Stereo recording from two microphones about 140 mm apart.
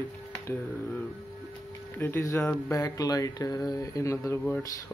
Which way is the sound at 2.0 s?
15° left (ahead or behind).